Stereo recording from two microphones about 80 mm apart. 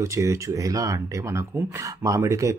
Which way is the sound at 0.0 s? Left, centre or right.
Right.